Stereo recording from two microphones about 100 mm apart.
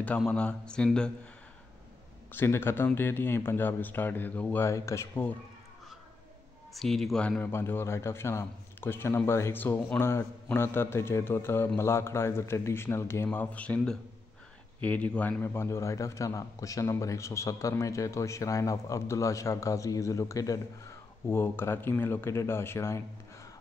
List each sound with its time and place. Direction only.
0.3 s speech: 10° left (ahead or behind)
2.3 s a man's voice: 25° left (ahead or behind)
4.6 s a man's voice: 30° left (ahead or behind)
6.7 s speech: centre (ahead or behind)
7.2 s a man's voice: 20° left (ahead or behind)
14.8 s a man's voice: 15° left (ahead or behind); by 20.6 s 35° left (ahead or behind)
21.3 s a man's voice: 25° left (ahead or behind)